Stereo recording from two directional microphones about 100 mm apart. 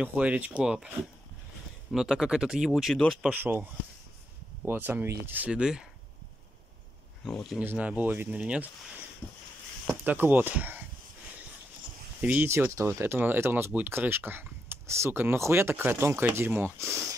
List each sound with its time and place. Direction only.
0.0 s speech: 15° right (ahead or behind)
3.3 s speech: 20° right (ahead or behind)
4.6 s speech: 20° right (ahead or behind)
7.2 s speech: 5° left (ahead or behind)
7.5 s speech: 15° right (ahead or behind)
9.8 s speech: 20° right (ahead or behind)
12.2 s speech: 15° right (ahead or behind)
12.4 s speech: 30° right (ahead or behind)